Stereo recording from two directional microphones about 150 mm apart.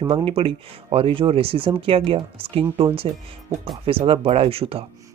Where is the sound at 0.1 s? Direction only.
40° right (ahead or behind).